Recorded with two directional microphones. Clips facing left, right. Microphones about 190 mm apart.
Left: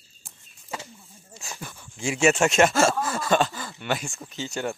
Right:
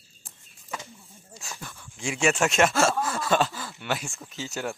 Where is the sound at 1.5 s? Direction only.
15° left (ahead or behind).